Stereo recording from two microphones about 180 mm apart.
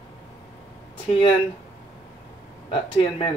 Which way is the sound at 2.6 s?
30° left (ahead or behind).